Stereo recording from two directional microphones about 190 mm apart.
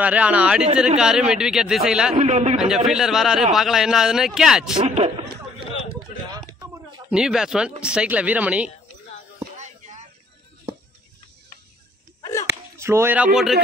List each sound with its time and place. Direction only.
0.0 s speech: 5° right (ahead or behind)
2.1 s a man's voice: 35° right (ahead or behind)
2.5 s speech: 5° right (ahead or behind)
4.7 s a man's voice: 35° right (ahead or behind)
6.3 s a sound: 20° right (ahead or behind)
7.1 s speech: 5° right (ahead or behind)
9.6 s a sound: 40° right (ahead or behind)
12.4 s speech: 15° right (ahead or behind)